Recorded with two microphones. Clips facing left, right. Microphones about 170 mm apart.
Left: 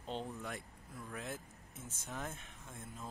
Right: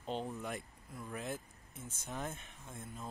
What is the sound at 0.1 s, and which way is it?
Speech, 5° right (ahead or behind).